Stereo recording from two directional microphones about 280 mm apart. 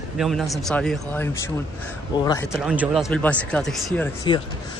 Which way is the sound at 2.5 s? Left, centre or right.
Centre.